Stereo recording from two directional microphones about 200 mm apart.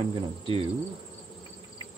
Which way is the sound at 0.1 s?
25° right (ahead or behind).